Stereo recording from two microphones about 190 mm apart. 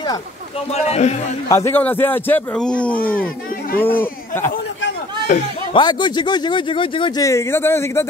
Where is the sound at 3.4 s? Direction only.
50° left (ahead or behind).